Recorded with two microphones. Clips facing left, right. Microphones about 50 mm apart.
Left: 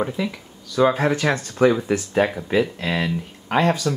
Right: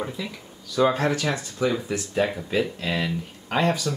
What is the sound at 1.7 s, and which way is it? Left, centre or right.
Speech, left.